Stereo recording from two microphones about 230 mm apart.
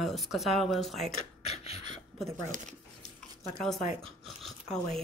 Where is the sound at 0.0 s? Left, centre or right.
Centre.